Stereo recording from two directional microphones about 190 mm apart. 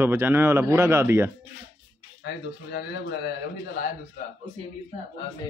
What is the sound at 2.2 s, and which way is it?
Speech, 60° left (ahead or behind).